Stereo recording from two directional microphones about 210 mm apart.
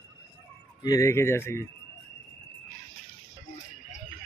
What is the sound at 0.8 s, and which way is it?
Speech, 15° left (ahead or behind).